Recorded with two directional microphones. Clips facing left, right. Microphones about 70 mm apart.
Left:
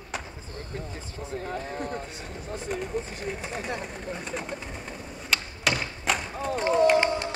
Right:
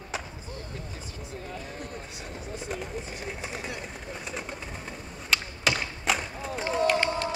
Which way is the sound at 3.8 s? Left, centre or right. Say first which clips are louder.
Left 3 dB; centre.